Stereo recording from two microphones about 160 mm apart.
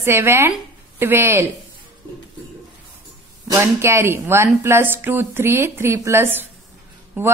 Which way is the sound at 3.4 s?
15° right (ahead or behind).